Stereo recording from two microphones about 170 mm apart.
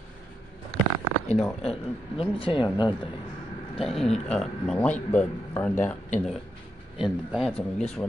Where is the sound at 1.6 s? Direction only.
35° left (ahead or behind).